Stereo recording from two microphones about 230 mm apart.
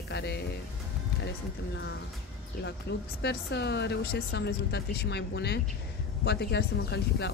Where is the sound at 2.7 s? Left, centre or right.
Left.